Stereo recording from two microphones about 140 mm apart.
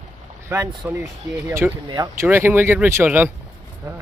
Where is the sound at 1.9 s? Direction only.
30° right (ahead or behind).